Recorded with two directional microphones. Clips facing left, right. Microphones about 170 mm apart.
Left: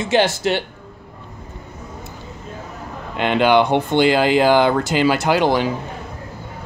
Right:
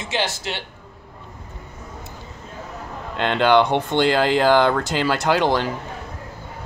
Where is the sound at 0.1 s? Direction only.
50° left (ahead or behind).